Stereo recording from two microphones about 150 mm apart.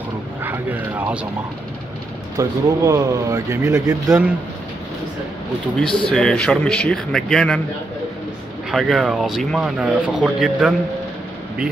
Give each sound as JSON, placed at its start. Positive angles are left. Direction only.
{"t": 0.4, "sound": "a sound", "side_deg": -15}
{"t": 2.3, "sound": "speech", "side_deg": -20}
{"t": 5.8, "sound": "a man's voice", "side_deg": 5}
{"t": 8.7, "sound": "a man's voice", "side_deg": 0}